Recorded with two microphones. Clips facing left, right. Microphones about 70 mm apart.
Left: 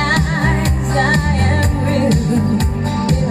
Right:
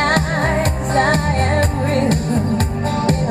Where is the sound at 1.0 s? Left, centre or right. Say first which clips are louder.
Even; right.